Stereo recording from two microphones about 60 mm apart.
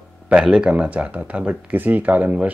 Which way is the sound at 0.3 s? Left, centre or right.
Centre.